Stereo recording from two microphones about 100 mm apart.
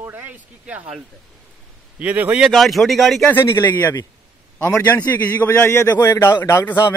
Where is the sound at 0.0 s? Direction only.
20° right (ahead or behind).